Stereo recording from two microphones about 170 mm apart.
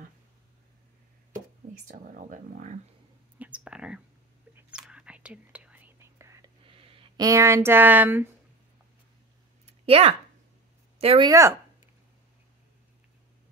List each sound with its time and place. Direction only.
1.9 s speech: 50° right (ahead or behind)
3.3 s speech: 10° right (ahead or behind)
4.6 s whispering: 5° right (ahead or behind)
6.6 s a sound: 30° right (ahead or behind)
7.2 s speech: 15° right (ahead or behind)
9.8 s speech: 35° right (ahead or behind)
11.2 s speech: 15° right (ahead or behind)